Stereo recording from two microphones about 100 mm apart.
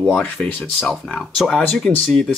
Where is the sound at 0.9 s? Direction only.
Centre (ahead or behind).